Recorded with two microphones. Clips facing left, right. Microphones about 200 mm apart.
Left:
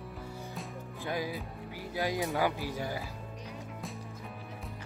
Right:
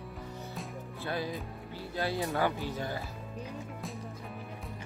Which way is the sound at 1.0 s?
15° left (ahead or behind).